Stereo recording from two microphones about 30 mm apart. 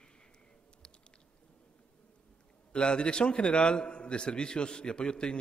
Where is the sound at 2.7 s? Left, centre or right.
Left.